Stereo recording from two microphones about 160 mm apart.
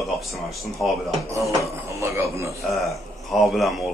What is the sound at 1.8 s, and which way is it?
Speech, 20° right (ahead or behind).